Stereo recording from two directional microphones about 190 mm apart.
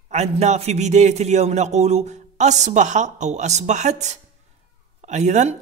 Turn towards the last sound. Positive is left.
turn(degrees=-35)  # may be behind; listen again after turning